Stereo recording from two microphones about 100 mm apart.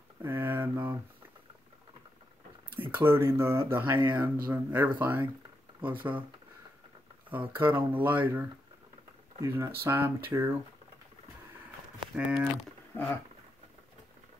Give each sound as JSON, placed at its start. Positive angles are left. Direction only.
{"t": 0.2, "sound": "a sound", "side_deg": -20}
{"t": 2.7, "sound": "speech", "side_deg": -20}
{"t": 7.2, "sound": "speech", "side_deg": -20}
{"t": 12.2, "sound": "speech", "side_deg": -10}